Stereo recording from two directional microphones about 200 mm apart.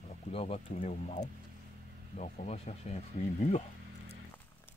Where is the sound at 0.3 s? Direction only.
30° left (ahead or behind).